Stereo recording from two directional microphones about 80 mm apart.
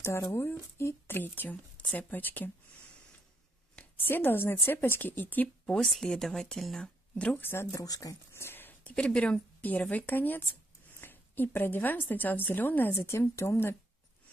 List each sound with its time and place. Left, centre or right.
0.3 s a woman's voice: left
3.7 s a woman's voice: left
5.7 s speech: centre
7.2 s speech: centre
7.4 s speech: left
7.8 s speech: left
8.3 s a sound: left
8.9 s a woman's voice: centre; by 13.7 s left